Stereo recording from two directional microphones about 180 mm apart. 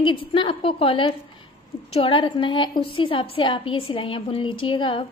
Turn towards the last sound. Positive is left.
turn(degrees=30)  # may be behind; listen again after turning